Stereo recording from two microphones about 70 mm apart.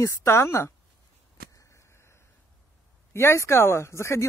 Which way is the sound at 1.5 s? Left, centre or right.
Left.